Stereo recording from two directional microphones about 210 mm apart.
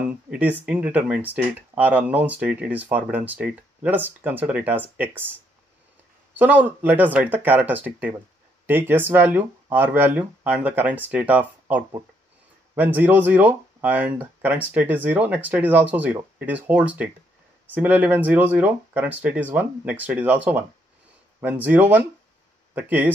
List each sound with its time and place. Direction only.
0.1 s speech: 5° right (ahead or behind)
6.3 s speech: 10° right (ahead or behind)